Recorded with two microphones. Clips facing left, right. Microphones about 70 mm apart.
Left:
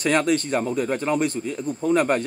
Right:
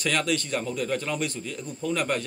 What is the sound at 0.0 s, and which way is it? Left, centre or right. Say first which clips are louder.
A man's voice: left 6 dB; left.